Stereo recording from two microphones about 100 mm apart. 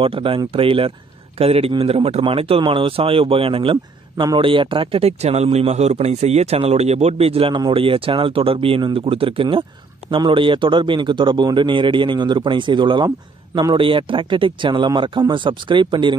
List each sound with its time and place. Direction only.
0.0 s a man's voice: 60° right (ahead or behind)
1.4 s speech: 80° right
1.7 s speech: 70° right (ahead or behind)
7.5 s a man's voice: 55° right (ahead or behind)